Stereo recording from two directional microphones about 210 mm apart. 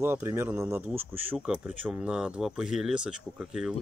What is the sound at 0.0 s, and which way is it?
Speech, 10° right (ahead or behind).